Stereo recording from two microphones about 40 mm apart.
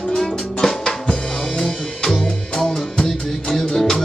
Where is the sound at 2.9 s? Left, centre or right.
Centre.